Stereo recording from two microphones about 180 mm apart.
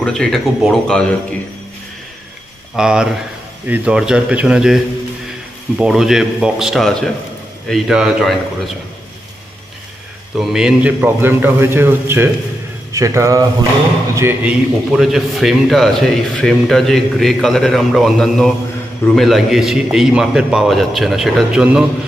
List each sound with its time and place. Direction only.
0.0 s a man's voice: 5° left (ahead or behind)
2.7 s a man's voice: 5° right (ahead or behind)
10.3 s a man's voice: centre (ahead or behind)